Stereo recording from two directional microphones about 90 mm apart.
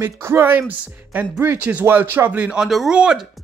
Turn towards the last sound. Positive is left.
turn(degrees=-10)  # may be behind; listen again after turning